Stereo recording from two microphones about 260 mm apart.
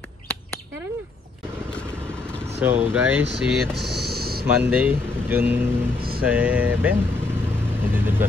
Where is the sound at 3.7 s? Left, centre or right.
Right.